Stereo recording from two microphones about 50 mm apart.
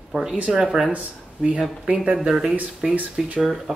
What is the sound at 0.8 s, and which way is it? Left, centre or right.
Speech, right.